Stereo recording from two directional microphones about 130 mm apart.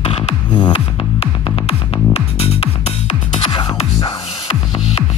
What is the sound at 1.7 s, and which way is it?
Music, 50° left (ahead or behind).